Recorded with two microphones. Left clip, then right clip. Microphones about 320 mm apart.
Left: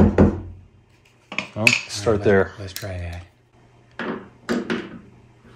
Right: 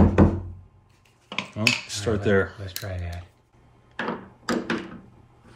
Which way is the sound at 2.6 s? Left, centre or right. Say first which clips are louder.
Left 3 dB; centre.